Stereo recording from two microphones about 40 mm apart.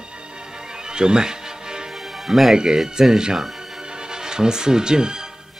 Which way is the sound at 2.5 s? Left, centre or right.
Centre.